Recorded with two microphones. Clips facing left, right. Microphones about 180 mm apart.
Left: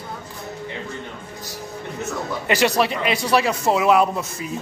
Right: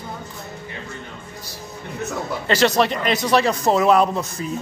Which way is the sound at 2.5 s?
10° left (ahead or behind).